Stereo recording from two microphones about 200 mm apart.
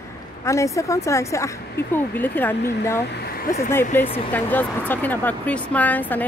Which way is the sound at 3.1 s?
50° left (ahead or behind).